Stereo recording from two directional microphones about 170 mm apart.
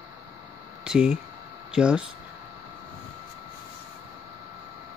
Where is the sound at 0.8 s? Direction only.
5° right (ahead or behind).